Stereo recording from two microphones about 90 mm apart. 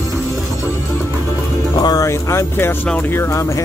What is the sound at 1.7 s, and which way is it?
Speech, 45° left (ahead or behind).